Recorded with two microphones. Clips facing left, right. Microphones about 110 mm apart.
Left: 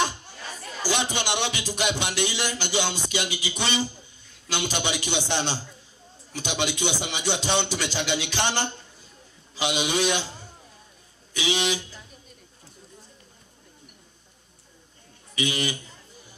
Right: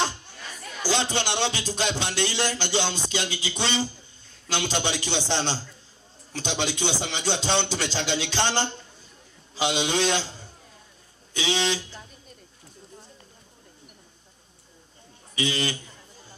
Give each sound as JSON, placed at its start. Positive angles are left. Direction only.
{"t": 0.0, "sound": "chatter", "side_deg": 15}
{"t": 0.4, "sound": "chatter", "side_deg": 35}
{"t": 0.8, "sound": "speech", "side_deg": 15}
{"t": 11.3, "sound": "speech", "side_deg": 15}
{"t": 15.3, "sound": "speech", "side_deg": 15}